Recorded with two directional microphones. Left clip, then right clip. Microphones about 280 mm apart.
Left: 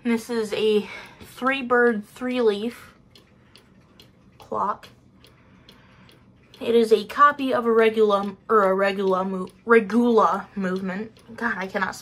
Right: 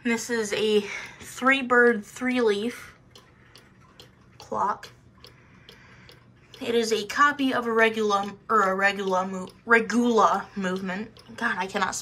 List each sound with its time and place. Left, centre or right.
0.2 s speech: centre
4.5 s speech: centre
6.6 s speech: centre
10.1 s speech: centre